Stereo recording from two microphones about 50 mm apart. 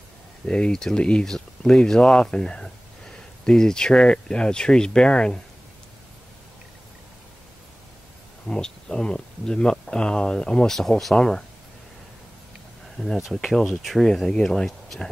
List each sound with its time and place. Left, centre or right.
0.5 s speech: centre
8.5 s speech: centre
10.8 s speech: centre
12.9 s speech: centre